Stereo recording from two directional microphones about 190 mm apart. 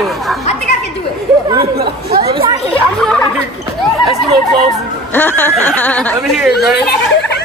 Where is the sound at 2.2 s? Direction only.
25° right (ahead or behind).